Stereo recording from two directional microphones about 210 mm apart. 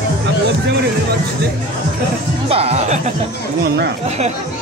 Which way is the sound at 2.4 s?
30° right (ahead or behind).